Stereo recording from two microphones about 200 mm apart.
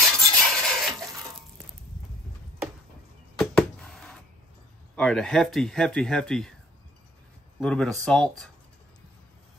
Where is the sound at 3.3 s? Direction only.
Centre (ahead or behind).